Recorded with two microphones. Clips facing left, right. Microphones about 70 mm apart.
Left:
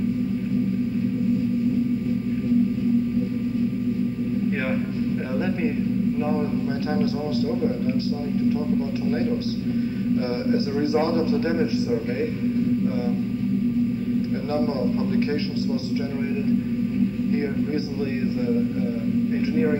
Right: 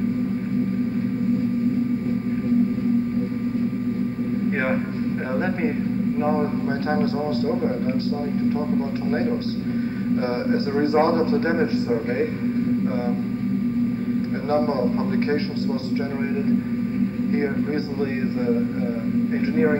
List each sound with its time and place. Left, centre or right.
10.5 s a man's voice: right
14.5 s a man's voice: right